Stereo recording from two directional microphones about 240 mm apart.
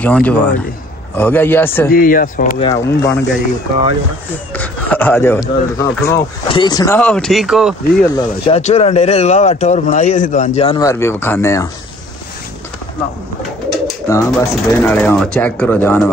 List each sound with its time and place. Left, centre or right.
0.0 s speech: centre
1.9 s speech: left
2.6 s speech: centre
4.6 s speech: centre
7.0 s speech: centre
8.1 s speech: left
10.9 s speech: centre
14.0 s speech: centre